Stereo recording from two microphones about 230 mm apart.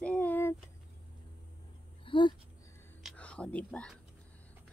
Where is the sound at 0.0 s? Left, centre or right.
Centre.